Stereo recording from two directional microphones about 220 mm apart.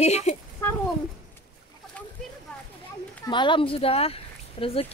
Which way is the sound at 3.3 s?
20° left (ahead or behind).